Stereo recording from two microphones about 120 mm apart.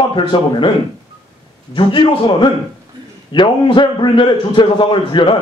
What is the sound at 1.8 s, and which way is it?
A man's voice, 45° left (ahead or behind).